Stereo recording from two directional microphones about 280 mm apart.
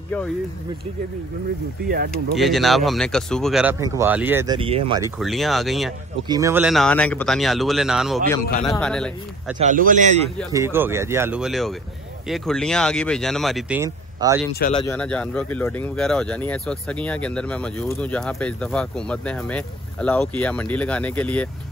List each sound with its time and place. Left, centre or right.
2.3 s speech: centre
5.2 s speech: centre
6.2 s speech: centre
9.6 s speech: right
10.5 s speech: centre
14.7 s speech: centre
15.0 s speech: centre